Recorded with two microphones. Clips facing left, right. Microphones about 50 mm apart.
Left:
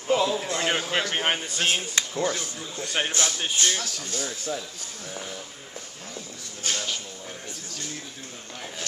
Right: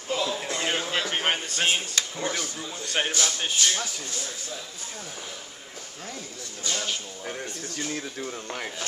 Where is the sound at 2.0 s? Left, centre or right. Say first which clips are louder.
Left 1 dB; left.